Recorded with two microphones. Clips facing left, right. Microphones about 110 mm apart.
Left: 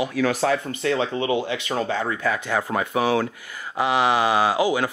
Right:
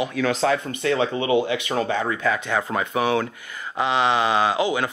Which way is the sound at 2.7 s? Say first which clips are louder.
Left 1 dB; 25° left (ahead or behind).